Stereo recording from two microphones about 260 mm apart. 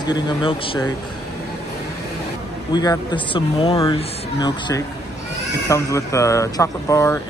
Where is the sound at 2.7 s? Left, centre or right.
Centre.